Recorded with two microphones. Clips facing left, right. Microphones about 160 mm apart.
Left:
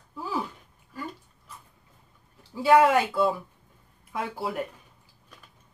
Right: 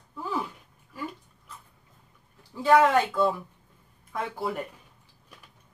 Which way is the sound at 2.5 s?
10° left (ahead or behind).